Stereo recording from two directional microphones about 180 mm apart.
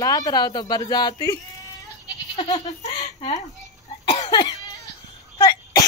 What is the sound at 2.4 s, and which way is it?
Goat, 30° left (ahead or behind).